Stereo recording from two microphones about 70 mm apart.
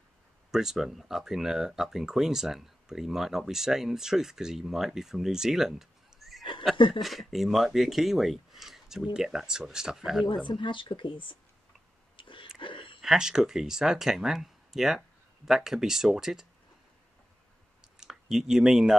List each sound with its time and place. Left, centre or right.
0.5 s speech: centre
10.2 s speech: left
13.0 s speech: centre
17.9 s speech: centre